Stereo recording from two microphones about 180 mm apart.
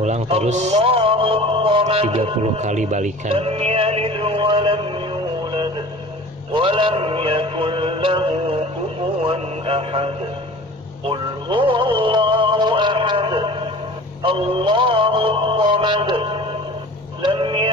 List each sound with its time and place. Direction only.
0.0 s a man's voice: 35° right (ahead or behind)
6.5 s mantra: 30° right (ahead or behind)
9.2 s a man's voice: 35° right (ahead or behind)
11.1 s music: 30° right (ahead or behind)
17.2 s vehicle: 30° right (ahead or behind)